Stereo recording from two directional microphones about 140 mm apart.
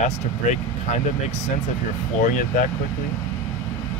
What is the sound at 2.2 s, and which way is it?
Speech, 75° left (ahead or behind).